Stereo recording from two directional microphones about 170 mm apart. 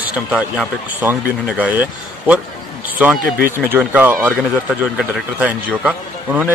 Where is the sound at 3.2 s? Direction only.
60° right (ahead or behind).